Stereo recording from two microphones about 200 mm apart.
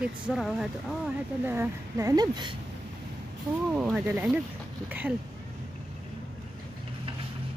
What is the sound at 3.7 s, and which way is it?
A woman's voice, 5° right (ahead or behind).